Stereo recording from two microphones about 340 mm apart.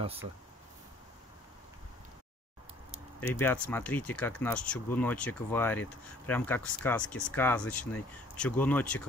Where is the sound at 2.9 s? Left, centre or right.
Centre.